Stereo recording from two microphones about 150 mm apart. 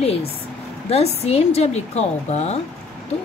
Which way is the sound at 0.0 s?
45° left (ahead or behind).